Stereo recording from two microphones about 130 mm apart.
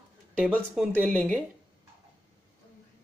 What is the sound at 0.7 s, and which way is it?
Speech, 5° right (ahead or behind).